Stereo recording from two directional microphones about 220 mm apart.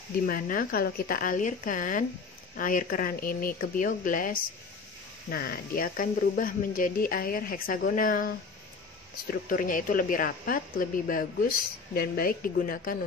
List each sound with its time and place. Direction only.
0.3 s a woman's voice: 40° left (ahead or behind)
9.3 s a woman's voice: 40° left (ahead or behind)